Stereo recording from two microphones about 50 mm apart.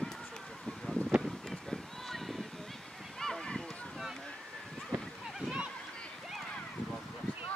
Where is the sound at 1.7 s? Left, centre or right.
Centre.